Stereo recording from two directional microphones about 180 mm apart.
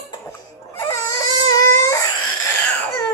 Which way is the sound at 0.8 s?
20° left (ahead or behind).